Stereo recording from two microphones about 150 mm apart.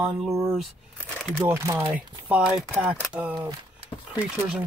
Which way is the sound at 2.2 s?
5° right (ahead or behind).